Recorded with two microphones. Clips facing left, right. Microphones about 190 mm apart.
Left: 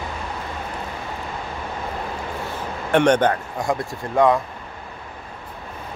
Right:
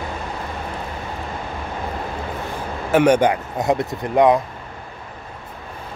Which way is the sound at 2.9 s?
10° right (ahead or behind).